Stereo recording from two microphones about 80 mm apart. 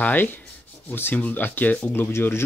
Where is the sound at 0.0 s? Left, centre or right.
Left.